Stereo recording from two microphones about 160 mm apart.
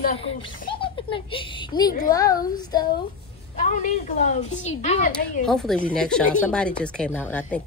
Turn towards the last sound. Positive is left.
turn(degrees=10)  # may be behind; listen again after turning